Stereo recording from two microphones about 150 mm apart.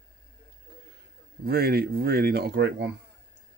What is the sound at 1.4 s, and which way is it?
Speech, 90° right.